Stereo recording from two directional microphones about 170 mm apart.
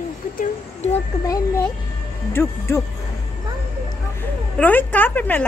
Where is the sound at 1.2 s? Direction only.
20° left (ahead or behind).